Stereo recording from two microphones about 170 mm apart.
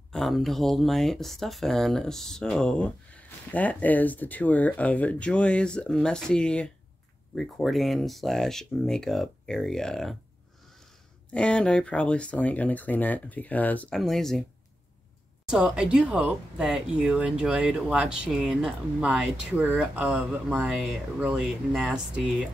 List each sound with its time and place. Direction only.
0.1 s speech: centre (ahead or behind)
11.3 s speech: 5° left (ahead or behind)
15.5 s speech: 5° right (ahead or behind)